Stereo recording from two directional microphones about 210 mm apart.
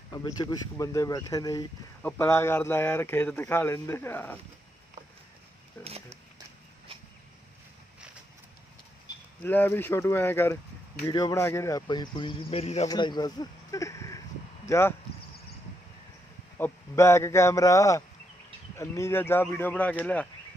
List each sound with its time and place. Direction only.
0.1 s a man's voice: 20° left (ahead or behind)
5.8 s speech: 10° left (ahead or behind)
9.4 s a man's voice: 10° left (ahead or behind)
16.5 s a man's voice: 10° left (ahead or behind)